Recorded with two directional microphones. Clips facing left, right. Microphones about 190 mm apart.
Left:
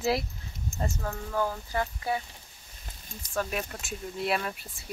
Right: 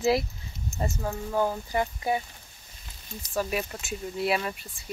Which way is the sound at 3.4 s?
5° right (ahead or behind).